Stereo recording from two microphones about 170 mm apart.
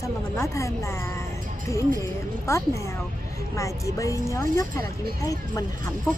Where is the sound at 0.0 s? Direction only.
15° left (ahead or behind).